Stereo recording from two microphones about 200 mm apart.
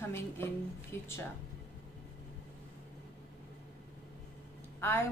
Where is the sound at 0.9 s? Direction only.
10° left (ahead or behind).